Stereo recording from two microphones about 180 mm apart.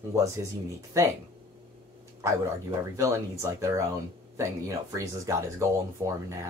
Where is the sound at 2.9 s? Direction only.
15° right (ahead or behind).